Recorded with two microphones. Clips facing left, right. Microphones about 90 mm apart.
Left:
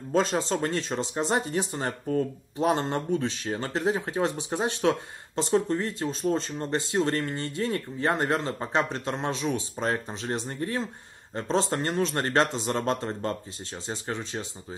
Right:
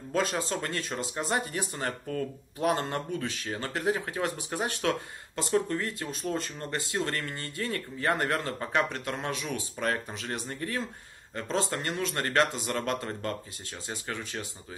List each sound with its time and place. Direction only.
0.1 s speech: 30° left (ahead or behind)